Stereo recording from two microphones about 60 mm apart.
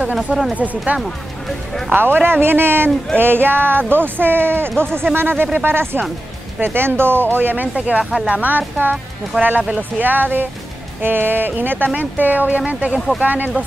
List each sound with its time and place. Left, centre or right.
0.1 s speech: centre
0.9 s speech: right
8.5 s speech: right